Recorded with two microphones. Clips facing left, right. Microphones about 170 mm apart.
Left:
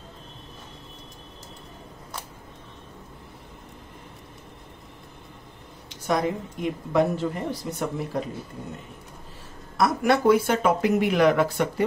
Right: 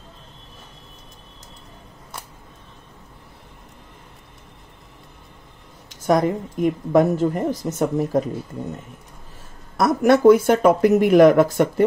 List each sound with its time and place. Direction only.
6.0 s a woman's voice: 45° right (ahead or behind)
9.8 s a woman's voice: 50° right (ahead or behind)